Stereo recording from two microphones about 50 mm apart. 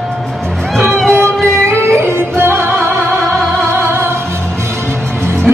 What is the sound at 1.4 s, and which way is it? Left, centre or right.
Music, centre.